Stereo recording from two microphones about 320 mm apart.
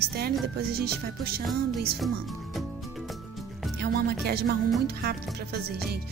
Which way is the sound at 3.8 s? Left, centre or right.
Right.